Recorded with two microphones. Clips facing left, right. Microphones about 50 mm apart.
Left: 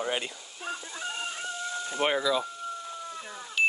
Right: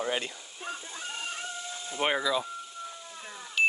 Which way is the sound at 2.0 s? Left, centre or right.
Centre.